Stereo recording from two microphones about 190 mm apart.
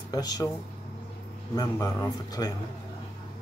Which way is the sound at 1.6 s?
20° left (ahead or behind).